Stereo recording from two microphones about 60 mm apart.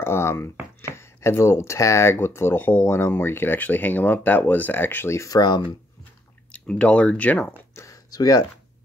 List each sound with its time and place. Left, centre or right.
0.0 s speech: left
2.0 s speech: left
5.1 s speech: left
6.5 s speech: left
7.7 s a sound: left